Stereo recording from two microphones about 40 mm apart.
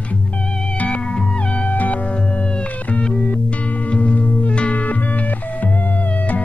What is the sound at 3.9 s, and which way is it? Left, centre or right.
Music, left.